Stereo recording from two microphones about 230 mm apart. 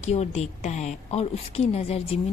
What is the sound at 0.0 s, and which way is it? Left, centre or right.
A woman's voice, left.